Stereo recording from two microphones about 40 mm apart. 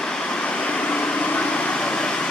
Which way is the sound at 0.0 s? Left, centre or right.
Left.